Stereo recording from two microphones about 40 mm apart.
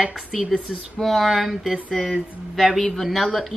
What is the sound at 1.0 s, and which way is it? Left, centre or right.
Speech, centre.